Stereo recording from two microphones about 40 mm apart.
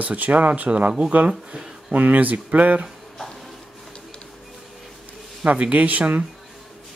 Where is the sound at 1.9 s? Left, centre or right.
Right.